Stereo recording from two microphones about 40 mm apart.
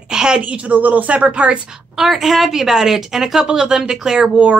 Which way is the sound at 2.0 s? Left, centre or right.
Centre.